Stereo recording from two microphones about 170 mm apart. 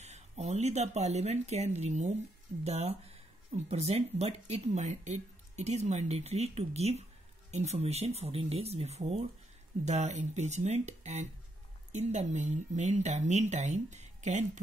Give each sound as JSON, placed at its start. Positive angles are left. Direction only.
{"t": 0.0, "sound": "speech", "side_deg": -40}